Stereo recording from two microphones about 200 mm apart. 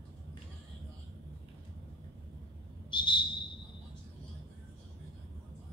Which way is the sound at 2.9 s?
25° left (ahead or behind).